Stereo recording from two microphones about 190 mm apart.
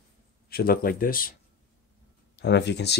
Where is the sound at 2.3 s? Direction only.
65° left (ahead or behind).